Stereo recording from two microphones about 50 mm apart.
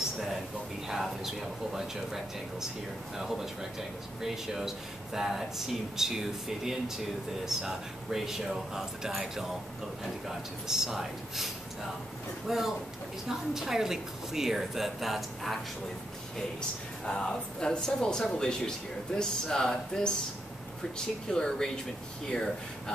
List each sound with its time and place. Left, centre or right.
0.8 s speech: centre
17.0 s speech: centre
21.3 s speech: centre